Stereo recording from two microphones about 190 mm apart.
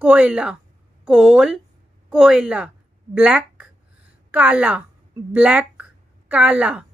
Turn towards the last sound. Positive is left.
turn(degrees=-5)  # may be behind; listen again after turning